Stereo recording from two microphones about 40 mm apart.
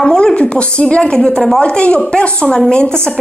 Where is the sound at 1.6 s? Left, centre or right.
Left.